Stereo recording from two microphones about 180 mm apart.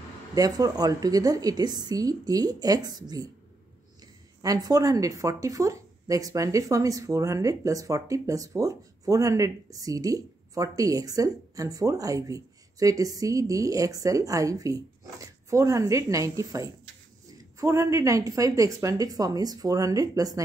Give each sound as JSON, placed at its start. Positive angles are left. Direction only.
{"t": 0.3, "sound": "a woman's voice", "side_deg": -20}
{"t": 4.4, "sound": "a woman's voice", "side_deg": -20}